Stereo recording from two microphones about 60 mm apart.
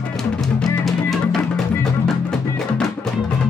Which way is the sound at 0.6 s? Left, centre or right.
Centre.